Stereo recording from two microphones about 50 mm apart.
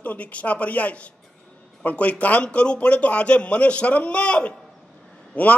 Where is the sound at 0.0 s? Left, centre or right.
Left.